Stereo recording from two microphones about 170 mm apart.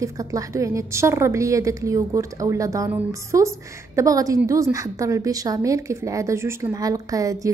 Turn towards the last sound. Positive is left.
turn(degrees=-20)  # may be behind; listen again after turning